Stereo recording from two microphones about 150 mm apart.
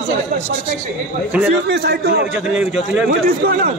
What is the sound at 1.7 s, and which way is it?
Speech, 90° right.